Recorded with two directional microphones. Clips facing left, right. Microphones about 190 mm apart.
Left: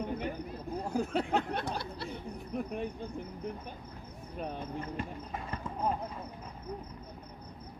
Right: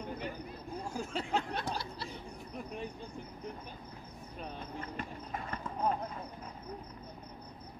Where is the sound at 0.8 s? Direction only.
60° left (ahead or behind).